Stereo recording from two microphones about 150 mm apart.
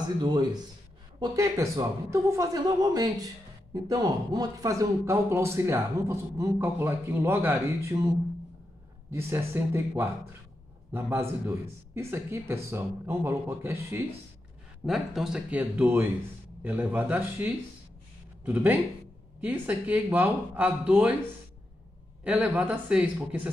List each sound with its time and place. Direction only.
0.2 s speech: 30° right (ahead or behind)
14.9 s speech: 5° right (ahead or behind)
22.2 s speech: 10° right (ahead or behind)